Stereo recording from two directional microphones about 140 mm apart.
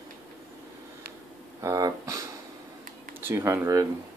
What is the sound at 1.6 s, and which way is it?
Speech, 25° right (ahead or behind).